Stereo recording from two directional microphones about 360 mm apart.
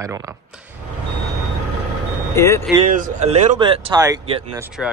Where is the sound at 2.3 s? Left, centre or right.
Centre.